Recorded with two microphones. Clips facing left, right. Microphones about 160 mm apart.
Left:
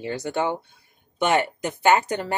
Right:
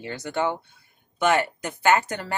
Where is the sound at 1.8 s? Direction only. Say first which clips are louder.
Left 2 dB; 15° left (ahead or behind).